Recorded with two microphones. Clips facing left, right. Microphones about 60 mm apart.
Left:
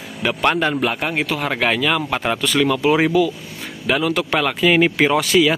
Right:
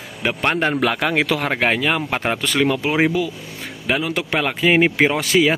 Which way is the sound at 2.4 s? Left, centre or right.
Right.